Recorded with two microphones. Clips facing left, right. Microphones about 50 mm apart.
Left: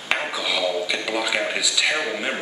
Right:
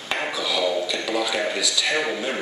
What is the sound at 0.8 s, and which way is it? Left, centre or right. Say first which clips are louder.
Speech: even; left.